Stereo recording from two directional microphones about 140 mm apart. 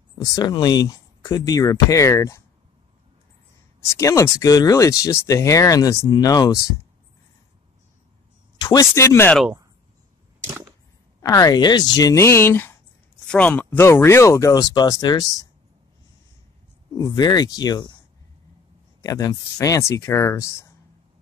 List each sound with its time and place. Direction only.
0.2 s speech: 25° left (ahead or behind)
3.9 s speech: 20° left (ahead or behind)
8.5 s speech: 25° left (ahead or behind)
11.1 s speech: 25° left (ahead or behind)
16.9 s speech: 25° left (ahead or behind)
18.9 s speech: 25° left (ahead or behind)